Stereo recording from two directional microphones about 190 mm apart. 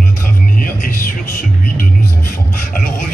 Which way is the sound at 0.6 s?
45° left (ahead or behind).